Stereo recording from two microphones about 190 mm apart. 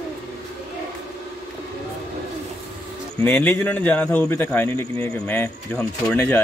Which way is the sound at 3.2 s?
10° left (ahead or behind).